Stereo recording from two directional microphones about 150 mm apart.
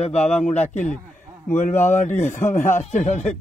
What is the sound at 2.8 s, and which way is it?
Mantra, 50° left (ahead or behind).